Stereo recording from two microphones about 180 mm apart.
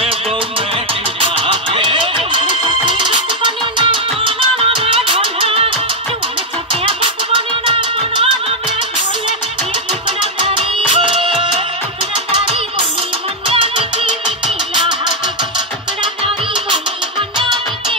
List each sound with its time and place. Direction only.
1.2 s music: 30° right (ahead or behind)
7.3 s music: 30° right (ahead or behind)
10.5 s music: 30° right (ahead or behind)
13.5 s music: 30° right (ahead or behind)
17.4 s music: 25° right (ahead or behind)